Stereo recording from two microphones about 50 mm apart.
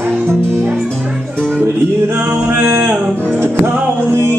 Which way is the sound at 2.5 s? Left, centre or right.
Right.